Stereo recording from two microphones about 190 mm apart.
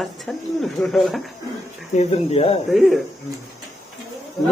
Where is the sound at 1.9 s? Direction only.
35° left (ahead or behind).